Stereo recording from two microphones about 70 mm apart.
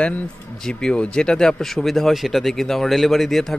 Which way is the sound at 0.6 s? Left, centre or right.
Centre.